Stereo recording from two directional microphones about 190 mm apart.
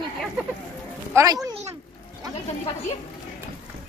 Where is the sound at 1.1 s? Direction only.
20° right (ahead or behind).